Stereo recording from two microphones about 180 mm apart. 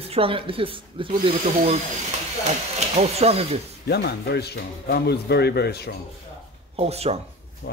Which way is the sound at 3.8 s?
65° left (ahead or behind).